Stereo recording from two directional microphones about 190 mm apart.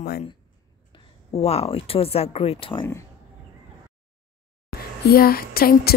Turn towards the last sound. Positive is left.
turn(degrees=50)  # may be behind; listen again after turning